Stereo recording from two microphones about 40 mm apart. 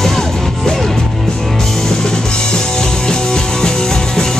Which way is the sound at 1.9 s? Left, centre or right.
Centre.